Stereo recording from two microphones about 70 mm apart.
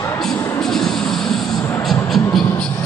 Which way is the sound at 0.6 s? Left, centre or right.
Centre.